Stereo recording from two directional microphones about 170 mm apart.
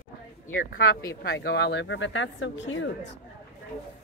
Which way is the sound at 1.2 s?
70° left (ahead or behind).